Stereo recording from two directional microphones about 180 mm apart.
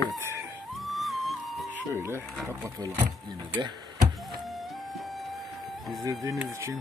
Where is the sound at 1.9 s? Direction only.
15° right (ahead or behind).